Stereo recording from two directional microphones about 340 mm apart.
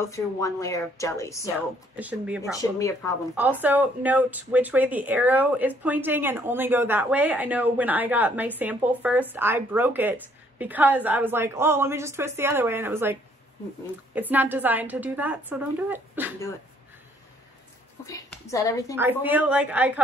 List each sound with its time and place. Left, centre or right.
0.0 s speech: centre
2.0 s speech: centre
3.6 s speech: centre
18.0 s a woman's voice: centre
18.9 s speech: centre